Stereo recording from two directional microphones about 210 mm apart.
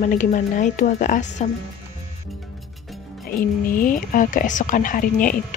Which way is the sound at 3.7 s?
40° left (ahead or behind).